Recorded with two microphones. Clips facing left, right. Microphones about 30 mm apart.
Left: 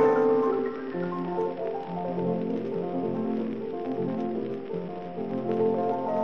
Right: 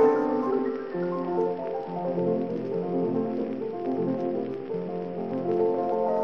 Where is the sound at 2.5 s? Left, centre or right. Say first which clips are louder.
Even; centre.